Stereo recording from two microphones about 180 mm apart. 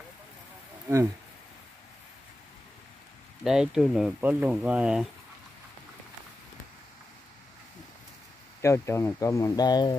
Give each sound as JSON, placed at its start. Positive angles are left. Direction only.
{"t": 3.4, "sound": "speech", "side_deg": -5}
{"t": 8.5, "sound": "speech", "side_deg": 15}